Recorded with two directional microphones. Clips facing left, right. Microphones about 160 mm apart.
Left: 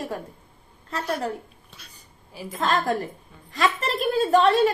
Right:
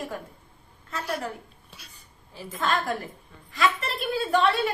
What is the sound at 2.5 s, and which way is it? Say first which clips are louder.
Speech: left 3 dB; 35° left (ahead or behind).